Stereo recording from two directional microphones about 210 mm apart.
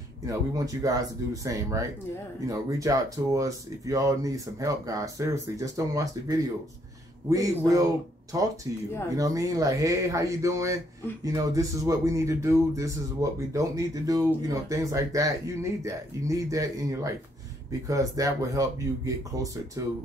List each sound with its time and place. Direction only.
0.3 s speech: 15° right (ahead or behind)